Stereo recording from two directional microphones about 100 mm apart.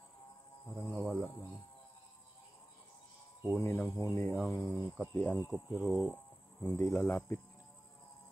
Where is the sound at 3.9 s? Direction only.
25° left (ahead or behind).